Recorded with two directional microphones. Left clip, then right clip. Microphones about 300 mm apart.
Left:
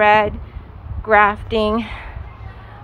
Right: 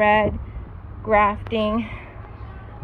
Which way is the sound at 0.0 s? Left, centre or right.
Left.